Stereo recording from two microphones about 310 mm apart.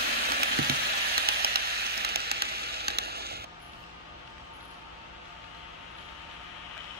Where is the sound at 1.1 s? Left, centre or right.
Right.